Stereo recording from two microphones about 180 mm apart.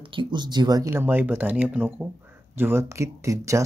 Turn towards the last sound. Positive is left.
turn(degrees=-15)  # may be behind; listen again after turning